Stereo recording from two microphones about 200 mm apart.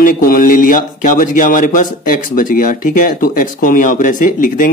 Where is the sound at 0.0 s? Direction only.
45° left (ahead or behind).